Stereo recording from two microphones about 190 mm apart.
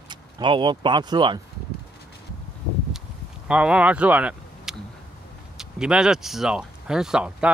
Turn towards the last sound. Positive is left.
turn(degrees=-5)  # may be behind; listen again after turning